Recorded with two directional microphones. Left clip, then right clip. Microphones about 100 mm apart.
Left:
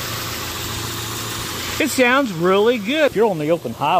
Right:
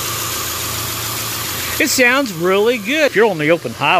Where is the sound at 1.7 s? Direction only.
Centre (ahead or behind).